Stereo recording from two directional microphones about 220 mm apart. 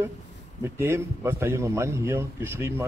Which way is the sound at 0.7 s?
10° right (ahead or behind).